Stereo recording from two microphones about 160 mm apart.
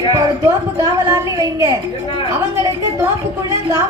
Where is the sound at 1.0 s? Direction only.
20° right (ahead or behind).